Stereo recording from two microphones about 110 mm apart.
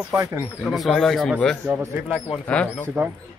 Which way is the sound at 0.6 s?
Centre (ahead or behind).